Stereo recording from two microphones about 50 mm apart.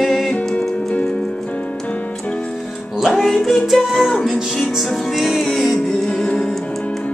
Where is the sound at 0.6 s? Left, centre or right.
Left.